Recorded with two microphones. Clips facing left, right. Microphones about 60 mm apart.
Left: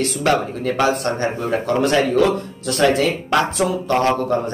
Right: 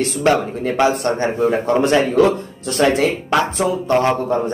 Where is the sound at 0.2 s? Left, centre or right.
Right.